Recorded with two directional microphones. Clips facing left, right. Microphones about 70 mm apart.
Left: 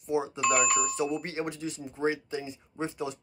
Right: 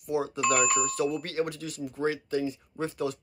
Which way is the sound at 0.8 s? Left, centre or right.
Centre.